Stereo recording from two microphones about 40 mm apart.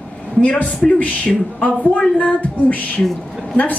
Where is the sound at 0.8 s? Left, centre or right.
Left.